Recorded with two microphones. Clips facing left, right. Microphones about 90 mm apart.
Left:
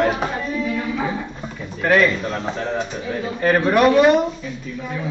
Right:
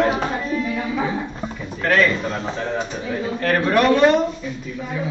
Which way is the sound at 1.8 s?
10° left (ahead or behind).